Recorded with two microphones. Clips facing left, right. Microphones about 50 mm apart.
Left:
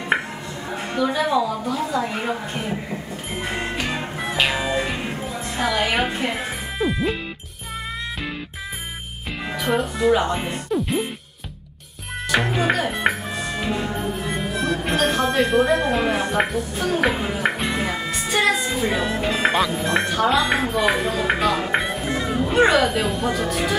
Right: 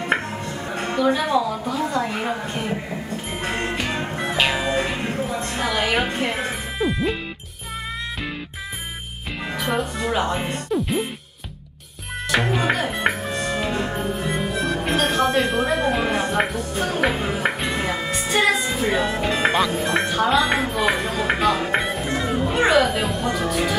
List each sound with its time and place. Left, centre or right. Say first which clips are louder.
0.7 s music: right 2 dB; right
1.1 s speech: even; centre
1.9 s a sound: even; centre
3.3 s music: even; centre
5.6 s speech: left 1 dB; centre
9.5 s speech: left 2 dB; centre
10.7 s music: even; centre
12.3 s music: even; centre
14.0 s speech: right 1 dB; centre